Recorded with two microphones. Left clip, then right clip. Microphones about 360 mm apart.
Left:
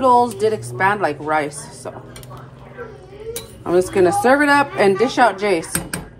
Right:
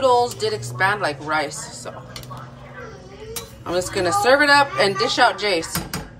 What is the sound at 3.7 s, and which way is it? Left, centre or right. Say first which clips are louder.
Speech: left 6 dB; centre.